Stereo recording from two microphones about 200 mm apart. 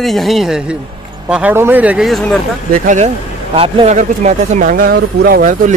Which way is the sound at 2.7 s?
40° right (ahead or behind).